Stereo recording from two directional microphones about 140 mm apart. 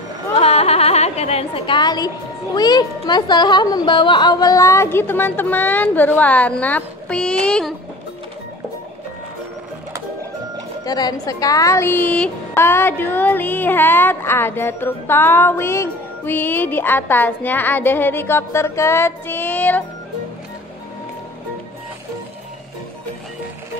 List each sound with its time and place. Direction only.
0.3 s a woman's voice: 45° left (ahead or behind); by 7.7 s 5° left (ahead or behind)
10.9 s speech: 30° left (ahead or behind); by 19.8 s 10° left (ahead or behind)